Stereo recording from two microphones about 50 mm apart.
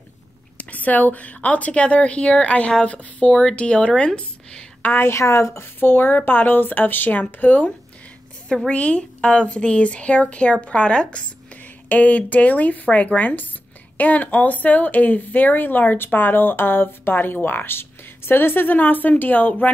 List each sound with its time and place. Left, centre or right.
0.6 s speech: left
5.0 s a woman's voice: left
5.6 s speech: left
8.6 s speech: left